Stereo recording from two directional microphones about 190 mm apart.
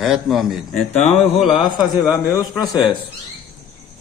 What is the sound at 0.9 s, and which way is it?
Speech, 35° left (ahead or behind).